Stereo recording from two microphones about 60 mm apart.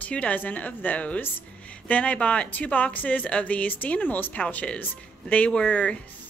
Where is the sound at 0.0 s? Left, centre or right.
Left.